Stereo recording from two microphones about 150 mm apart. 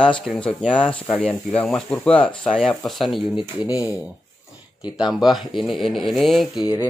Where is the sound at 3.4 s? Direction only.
25° left (ahead or behind).